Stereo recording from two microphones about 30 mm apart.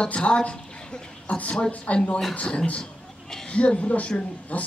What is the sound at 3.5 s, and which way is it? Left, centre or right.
Speech, left.